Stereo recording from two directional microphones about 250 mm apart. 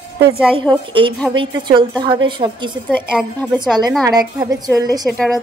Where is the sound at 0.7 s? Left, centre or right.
Centre.